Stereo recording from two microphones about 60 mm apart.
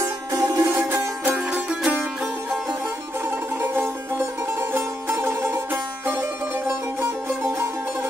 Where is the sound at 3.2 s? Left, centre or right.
Right.